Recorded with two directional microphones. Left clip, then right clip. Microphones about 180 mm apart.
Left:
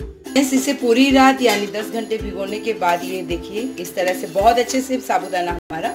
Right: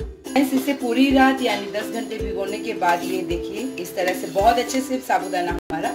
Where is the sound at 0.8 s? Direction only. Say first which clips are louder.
Left 4 dB; 40° left (ahead or behind).